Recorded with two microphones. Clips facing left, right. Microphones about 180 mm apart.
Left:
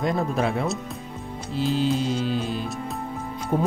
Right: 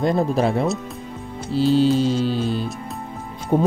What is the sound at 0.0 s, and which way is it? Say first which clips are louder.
Speech: right 5 dB; 35° right (ahead or behind).